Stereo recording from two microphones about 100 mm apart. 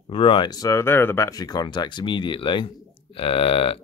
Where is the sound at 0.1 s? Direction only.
60° left (ahead or behind).